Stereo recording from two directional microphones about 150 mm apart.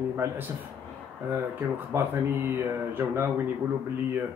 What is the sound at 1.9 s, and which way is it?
Speech, 15° right (ahead or behind).